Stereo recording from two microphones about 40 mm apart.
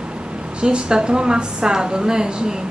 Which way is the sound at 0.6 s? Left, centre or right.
Right.